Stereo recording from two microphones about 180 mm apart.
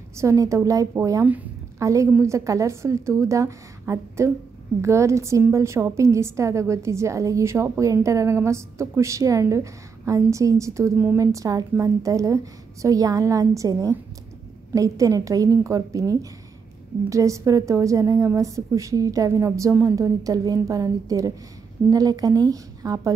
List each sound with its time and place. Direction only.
0.2 s a woman's voice: 15° right (ahead or behind)